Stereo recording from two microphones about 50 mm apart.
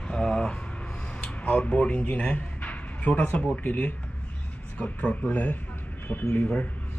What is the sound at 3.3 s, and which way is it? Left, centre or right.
Speech, left.